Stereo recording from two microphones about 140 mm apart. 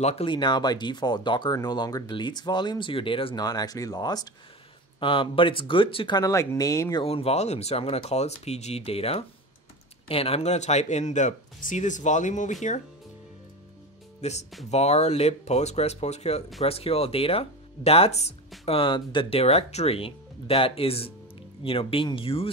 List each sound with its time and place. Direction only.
0.0 s speech: 45° left (ahead or behind)
3.4 s speech: 25° left (ahead or behind)
7.0 s speech: 45° left (ahead or behind); by 12.5 s 60° left (ahead or behind)
14.2 s speech: 50° left (ahead or behind)
18.7 s speech: 35° left (ahead or behind)